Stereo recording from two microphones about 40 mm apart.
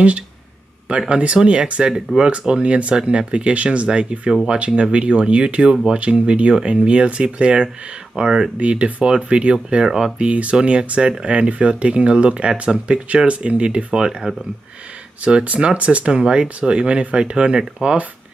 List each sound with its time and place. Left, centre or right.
0.8 s speech: right
8.5 s speech: right
9.8 s speech: centre
10.1 s speech: right
15.2 s speech: right